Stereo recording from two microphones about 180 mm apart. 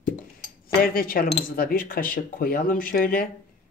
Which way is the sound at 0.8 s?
50° left (ahead or behind).